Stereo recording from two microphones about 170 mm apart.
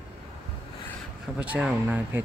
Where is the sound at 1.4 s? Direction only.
5° right (ahead or behind).